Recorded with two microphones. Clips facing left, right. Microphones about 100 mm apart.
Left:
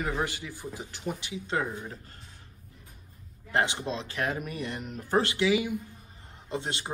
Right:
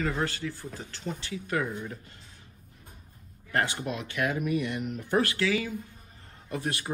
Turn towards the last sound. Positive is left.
turn(degrees=25)  # may be behind; listen again after turning